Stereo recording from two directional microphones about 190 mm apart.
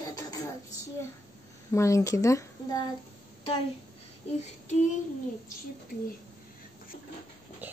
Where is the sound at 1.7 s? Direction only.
15° left (ahead or behind).